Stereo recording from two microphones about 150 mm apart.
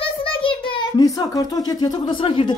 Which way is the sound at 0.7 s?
25° left (ahead or behind).